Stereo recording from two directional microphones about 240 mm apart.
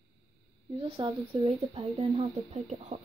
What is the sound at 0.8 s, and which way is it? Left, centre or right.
Speech, right.